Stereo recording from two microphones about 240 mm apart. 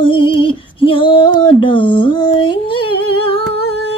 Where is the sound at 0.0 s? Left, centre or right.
Left.